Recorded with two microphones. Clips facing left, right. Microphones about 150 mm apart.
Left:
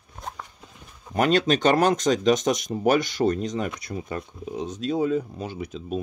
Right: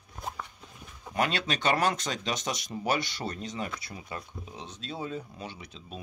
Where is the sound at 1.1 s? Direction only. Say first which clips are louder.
Left 9 dB; 40° left (ahead or behind).